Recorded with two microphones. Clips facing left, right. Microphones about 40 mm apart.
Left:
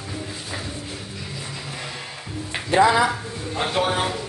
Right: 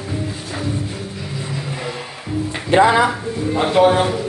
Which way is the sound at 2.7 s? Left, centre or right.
Right.